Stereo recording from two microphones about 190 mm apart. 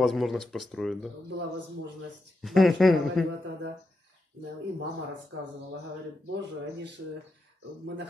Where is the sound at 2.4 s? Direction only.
Centre (ahead or behind).